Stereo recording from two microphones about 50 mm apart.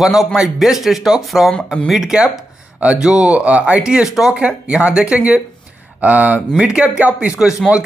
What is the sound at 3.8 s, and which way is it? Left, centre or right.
A man's voice, centre.